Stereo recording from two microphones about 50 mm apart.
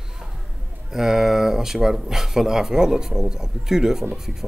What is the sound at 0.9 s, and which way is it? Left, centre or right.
Speech, centre.